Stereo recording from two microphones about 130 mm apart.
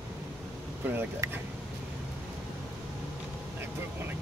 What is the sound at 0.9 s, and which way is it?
Speech, 15° right (ahead or behind).